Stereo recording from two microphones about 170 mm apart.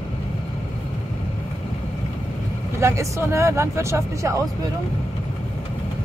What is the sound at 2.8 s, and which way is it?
Speech, 15° right (ahead or behind).